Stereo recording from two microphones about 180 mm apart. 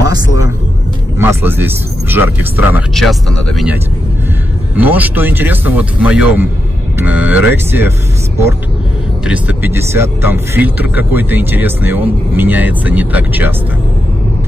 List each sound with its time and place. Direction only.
0.0 s music: 20° right (ahead or behind)
1.1 s speech: 15° right (ahead or behind)
2.9 s speech: centre (ahead or behind)
4.7 s speech: 10° right (ahead or behind)
9.2 s speech: 10° right (ahead or behind)